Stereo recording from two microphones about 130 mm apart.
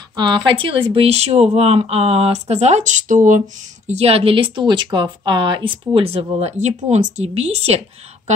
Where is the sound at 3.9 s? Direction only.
50° right (ahead or behind).